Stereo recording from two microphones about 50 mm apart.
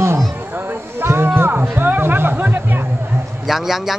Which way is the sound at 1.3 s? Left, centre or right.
Right.